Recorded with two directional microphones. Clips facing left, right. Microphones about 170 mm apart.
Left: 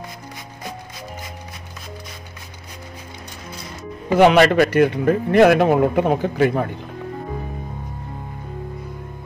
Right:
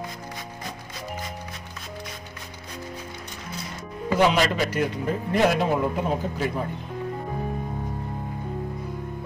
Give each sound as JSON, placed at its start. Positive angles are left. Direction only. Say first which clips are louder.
{"t": 4.2, "sound": "a man's voice", "louder": "left 9 dB", "side_deg": 65}